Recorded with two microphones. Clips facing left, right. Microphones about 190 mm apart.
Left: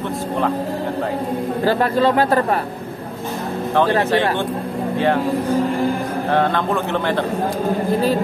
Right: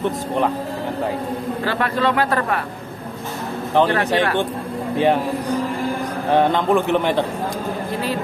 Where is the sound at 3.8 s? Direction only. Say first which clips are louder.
Right 1 dB; 20° right (ahead or behind).